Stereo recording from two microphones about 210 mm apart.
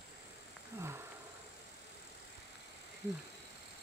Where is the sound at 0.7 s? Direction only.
10° right (ahead or behind).